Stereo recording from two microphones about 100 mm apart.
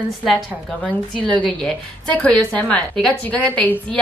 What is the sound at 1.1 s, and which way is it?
A woman's voice, 10° left (ahead or behind).